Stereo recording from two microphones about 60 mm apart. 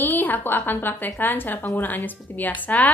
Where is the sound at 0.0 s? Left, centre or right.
Left.